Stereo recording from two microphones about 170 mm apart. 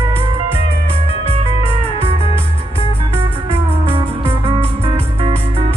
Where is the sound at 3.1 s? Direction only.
35° right (ahead or behind).